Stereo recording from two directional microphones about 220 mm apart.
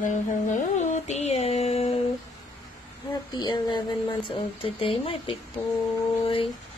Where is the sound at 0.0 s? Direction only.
35° left (ahead or behind).